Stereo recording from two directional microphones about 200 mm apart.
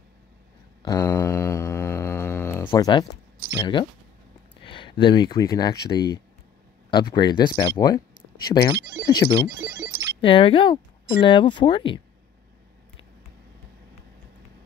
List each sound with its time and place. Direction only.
0.8 s mantra: 15° left (ahead or behind)
2.7 s speech: 20° left (ahead or behind)
8.7 s speech: 15° right (ahead or behind)
9.2 s speech: 15° left (ahead or behind)
9.7 s telephone bell ringing: 15° right (ahead or behind)
10.2 s speech: 25° left (ahead or behind)